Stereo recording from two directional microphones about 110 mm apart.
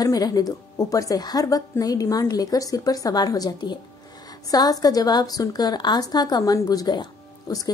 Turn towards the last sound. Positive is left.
turn(degrees=35)  # may be behind; listen again after turning